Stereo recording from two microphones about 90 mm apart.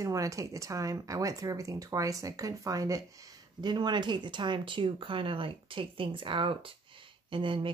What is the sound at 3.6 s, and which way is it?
Speech, 55° right (ahead or behind).